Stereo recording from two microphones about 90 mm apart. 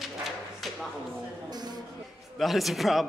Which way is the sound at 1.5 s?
50° right (ahead or behind).